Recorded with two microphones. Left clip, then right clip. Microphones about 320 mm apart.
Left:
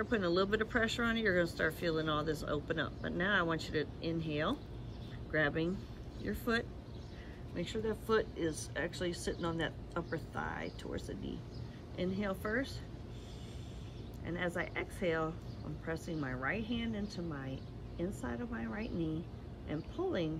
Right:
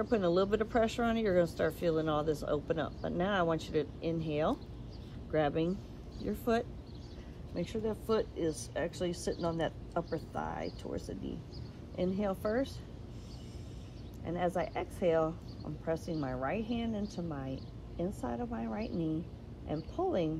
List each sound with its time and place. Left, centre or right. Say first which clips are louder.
0.0 s speech: right 3 dB; centre
12.0 s speech: right 4 dB; centre
14.2 s speech: right 4 dB; centre